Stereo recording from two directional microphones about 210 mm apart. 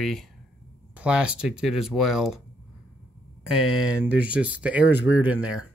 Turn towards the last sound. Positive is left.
turn(degrees=-5)  # may be behind; listen again after turning